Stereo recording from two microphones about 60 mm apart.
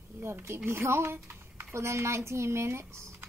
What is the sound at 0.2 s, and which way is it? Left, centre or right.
Speech, right.